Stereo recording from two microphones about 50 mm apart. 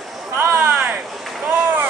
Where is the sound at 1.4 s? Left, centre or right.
Right.